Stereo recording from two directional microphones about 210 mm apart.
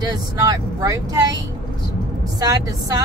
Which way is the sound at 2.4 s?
15° right (ahead or behind).